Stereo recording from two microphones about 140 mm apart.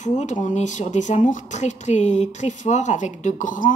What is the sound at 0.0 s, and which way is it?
Speech, 55° left (ahead or behind).